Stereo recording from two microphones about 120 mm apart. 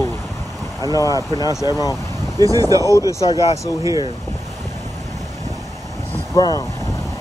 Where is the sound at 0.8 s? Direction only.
30° right (ahead or behind).